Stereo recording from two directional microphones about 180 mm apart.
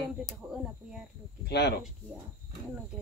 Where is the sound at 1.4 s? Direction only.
65° left (ahead or behind).